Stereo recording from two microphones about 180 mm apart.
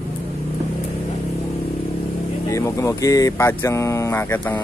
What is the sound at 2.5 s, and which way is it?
Speech, 15° left (ahead or behind).